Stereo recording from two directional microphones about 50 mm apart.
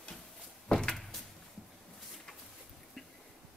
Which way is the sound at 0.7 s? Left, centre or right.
Centre.